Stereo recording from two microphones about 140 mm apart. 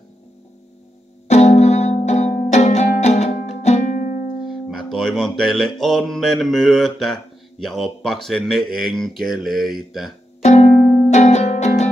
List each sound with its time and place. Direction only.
1.2 s music: 50° left (ahead or behind)
4.4 s music: centre (ahead or behind)
10.4 s music: 55° left (ahead or behind)
11.1 s music: 55° left (ahead or behind)